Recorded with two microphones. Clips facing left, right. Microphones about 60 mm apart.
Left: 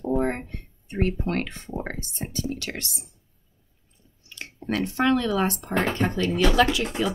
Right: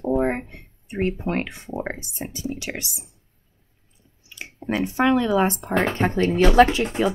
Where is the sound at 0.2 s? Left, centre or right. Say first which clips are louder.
Right 3 dB; centre.